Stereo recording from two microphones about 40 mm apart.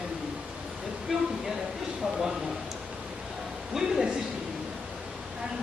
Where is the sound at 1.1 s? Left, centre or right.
Centre.